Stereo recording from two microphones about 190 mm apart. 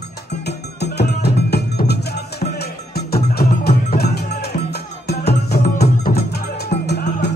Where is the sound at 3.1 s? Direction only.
55° left (ahead or behind).